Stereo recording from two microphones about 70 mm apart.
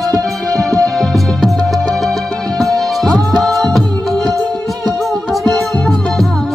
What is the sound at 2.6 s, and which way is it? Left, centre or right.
Music, centre.